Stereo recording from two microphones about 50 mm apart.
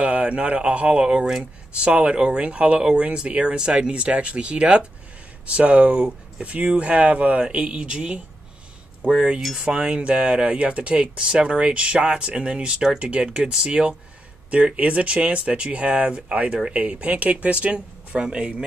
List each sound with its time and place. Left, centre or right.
0.0 s a sound: right
0.6 s speech: right
9.4 s speech: centre
9.7 s speech: right